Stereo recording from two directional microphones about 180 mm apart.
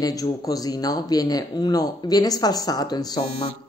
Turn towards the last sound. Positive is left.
turn(degrees=25)  # may be behind; listen again after turning